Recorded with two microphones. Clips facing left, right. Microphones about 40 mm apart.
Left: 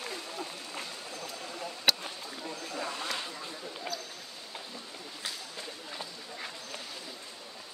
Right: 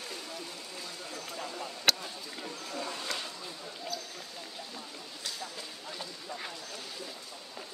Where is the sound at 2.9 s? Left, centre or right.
Left.